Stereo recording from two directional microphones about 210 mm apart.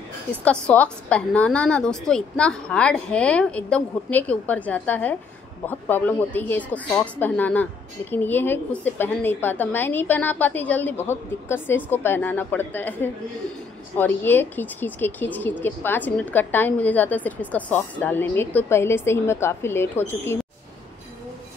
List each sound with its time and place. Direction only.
0.4 s a woman's voice: 5° left (ahead or behind)